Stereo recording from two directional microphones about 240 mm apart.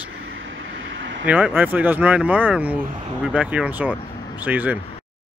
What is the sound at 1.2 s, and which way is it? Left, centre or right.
Speech, centre.